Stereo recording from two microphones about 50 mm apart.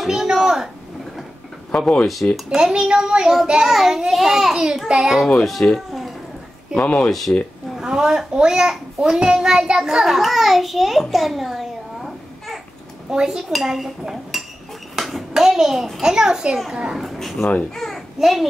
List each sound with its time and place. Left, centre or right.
0.0 s a woman's voice: centre
2.2 s a child's voice: left
2.5 s a child's voice: centre
5.3 s speech: centre
6.8 s speech: left
7.1 s speech: centre
7.7 s a child's voice: centre
13.1 s a child's voice: centre
16.9 s a child's voice: centre